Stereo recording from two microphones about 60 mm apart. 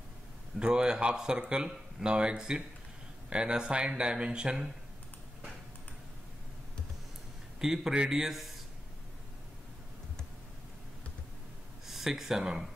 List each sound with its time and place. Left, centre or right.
0.6 s speech: centre
7.6 s speech: centre
11.8 s speech: centre